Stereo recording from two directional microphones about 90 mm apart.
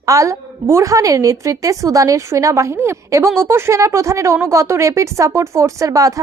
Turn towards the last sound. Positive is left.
turn(degrees=-40)  # may be behind; listen again after turning